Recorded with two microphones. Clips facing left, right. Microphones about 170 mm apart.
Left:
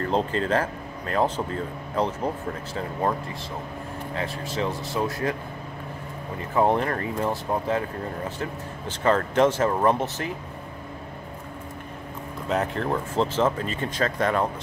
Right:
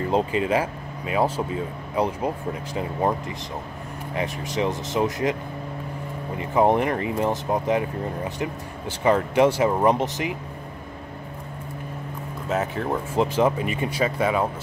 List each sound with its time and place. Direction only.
0.0 s speech: 10° right (ahead or behind)
6.5 s speech: 15° right (ahead or behind)
12.4 s speech: 5° right (ahead or behind)